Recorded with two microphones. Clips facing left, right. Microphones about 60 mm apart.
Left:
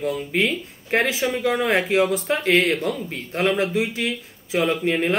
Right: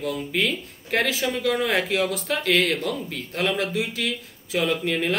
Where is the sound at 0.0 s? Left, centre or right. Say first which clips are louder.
Left 3 dB; left.